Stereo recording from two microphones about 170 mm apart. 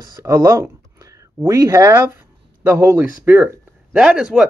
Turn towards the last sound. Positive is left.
turn(degrees=-5)  # may be behind; listen again after turning